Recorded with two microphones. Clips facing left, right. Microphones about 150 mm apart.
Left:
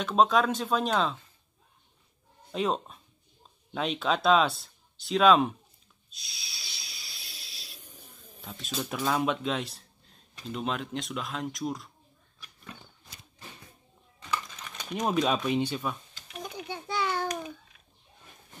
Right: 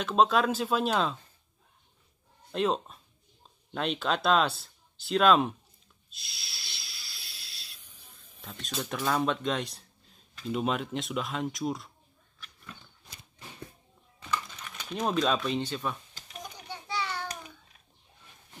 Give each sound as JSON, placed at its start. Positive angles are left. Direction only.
{"t": 0.0, "sound": "speech", "side_deg": 0}
{"t": 2.5, "sound": "speech", "side_deg": 0}
{"t": 6.0, "sound": "hiss", "side_deg": 0}
{"t": 7.8, "sound": "a sound", "side_deg": 40}
{"t": 8.4, "sound": "speech", "side_deg": 0}
{"t": 14.8, "sound": "speech", "side_deg": 10}
{"t": 16.6, "sound": "a sound", "side_deg": 55}